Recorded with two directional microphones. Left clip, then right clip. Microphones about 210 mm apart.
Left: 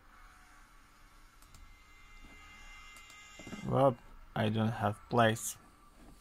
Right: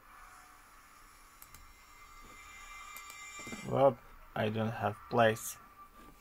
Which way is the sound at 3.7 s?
25° left (ahead or behind).